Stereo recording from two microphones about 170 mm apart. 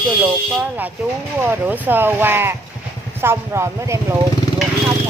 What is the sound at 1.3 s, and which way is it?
Speech, 10° right (ahead or behind).